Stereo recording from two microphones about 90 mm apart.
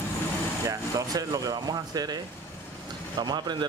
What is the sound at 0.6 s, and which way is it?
Speech, 45° right (ahead or behind).